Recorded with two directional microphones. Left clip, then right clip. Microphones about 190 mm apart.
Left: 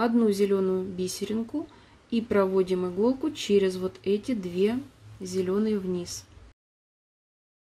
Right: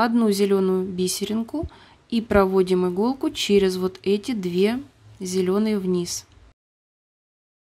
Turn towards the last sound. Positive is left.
turn(degrees=-35)  # may be behind; listen again after turning